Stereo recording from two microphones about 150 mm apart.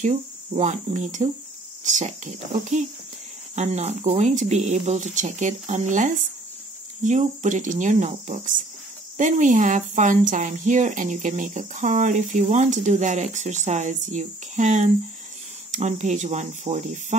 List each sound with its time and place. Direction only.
0.0 s speech: 55° right (ahead or behind)